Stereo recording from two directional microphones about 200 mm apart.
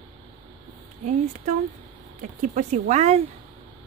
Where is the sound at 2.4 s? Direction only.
35° right (ahead or behind).